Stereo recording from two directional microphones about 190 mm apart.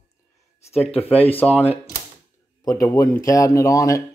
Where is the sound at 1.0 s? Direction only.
10° left (ahead or behind).